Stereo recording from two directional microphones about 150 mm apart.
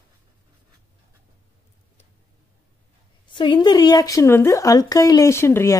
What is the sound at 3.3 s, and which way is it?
Speech, 30° left (ahead or behind).